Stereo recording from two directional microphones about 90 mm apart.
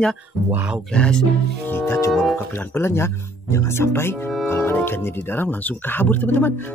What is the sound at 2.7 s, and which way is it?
Speech, 30° left (ahead or behind).